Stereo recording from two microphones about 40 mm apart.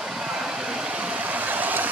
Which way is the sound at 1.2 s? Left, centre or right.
Right.